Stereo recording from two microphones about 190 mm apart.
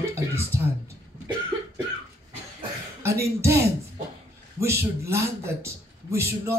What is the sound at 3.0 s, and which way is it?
A man's voice, 15° right (ahead or behind).